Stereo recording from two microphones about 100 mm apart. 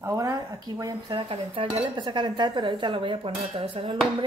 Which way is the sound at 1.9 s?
50° right (ahead or behind).